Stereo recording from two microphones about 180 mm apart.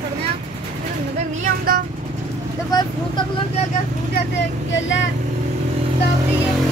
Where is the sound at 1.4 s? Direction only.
55° right (ahead or behind).